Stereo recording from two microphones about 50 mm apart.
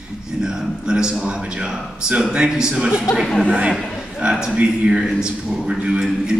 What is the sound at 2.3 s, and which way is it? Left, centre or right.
Speech, centre.